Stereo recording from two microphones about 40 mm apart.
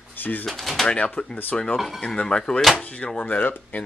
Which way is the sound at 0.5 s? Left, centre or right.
Centre.